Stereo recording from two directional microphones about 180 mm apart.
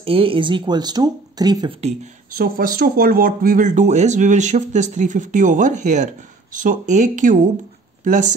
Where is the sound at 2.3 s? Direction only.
55° right (ahead or behind).